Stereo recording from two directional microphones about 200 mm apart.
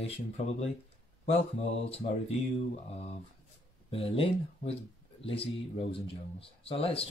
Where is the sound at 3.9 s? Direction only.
30° left (ahead or behind).